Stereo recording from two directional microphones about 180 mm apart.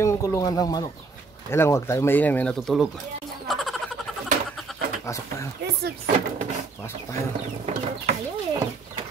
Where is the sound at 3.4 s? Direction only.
Centre (ahead or behind).